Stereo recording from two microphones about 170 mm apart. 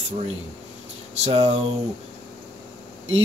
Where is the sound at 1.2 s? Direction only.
40° right (ahead or behind).